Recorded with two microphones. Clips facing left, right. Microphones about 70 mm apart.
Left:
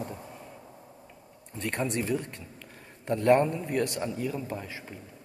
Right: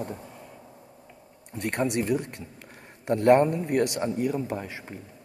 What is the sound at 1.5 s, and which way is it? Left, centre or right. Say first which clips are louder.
Speech: right 4 dB; right.